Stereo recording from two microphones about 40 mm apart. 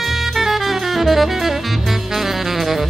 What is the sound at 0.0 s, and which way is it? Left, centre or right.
Music, centre.